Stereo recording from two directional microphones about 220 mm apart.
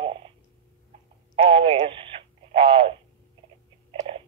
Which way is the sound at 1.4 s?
25° right (ahead or behind).